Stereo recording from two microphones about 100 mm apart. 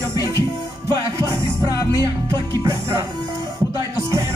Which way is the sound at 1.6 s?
40° left (ahead or behind).